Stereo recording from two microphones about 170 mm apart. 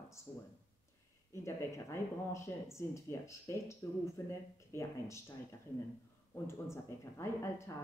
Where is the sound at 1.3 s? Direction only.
15° left (ahead or behind).